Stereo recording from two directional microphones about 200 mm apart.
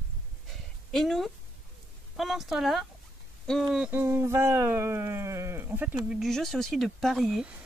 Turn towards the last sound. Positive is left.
turn(degrees=0)  # may be behind; listen again after turning